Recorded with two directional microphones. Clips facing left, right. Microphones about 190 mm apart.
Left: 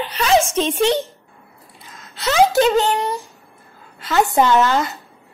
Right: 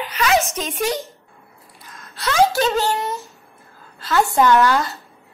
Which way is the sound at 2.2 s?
20° left (ahead or behind).